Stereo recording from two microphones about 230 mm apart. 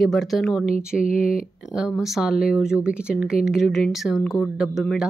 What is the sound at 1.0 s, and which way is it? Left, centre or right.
Speech, left.